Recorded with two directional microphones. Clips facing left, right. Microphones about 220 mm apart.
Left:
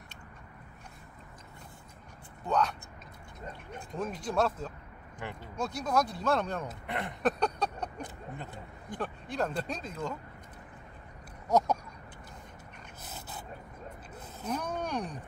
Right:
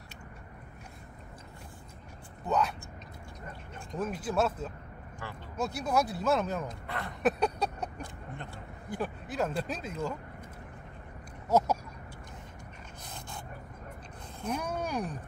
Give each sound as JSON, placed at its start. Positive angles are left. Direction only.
{"t": 2.4, "sound": "speech", "side_deg": -5}
{"t": 4.0, "sound": "speech", "side_deg": -5}
{"t": 5.2, "sound": "speech", "side_deg": 20}
{"t": 5.6, "sound": "speech", "side_deg": -5}
{"t": 6.9, "sound": "speech", "side_deg": 20}
{"t": 7.2, "sound": "a sound", "side_deg": -5}
{"t": 8.8, "sound": "speech", "side_deg": -5}
{"t": 11.4, "sound": "a sound", "side_deg": -5}
{"t": 13.0, "sound": "a sound", "side_deg": 5}
{"t": 14.4, "sound": "speech", "side_deg": -10}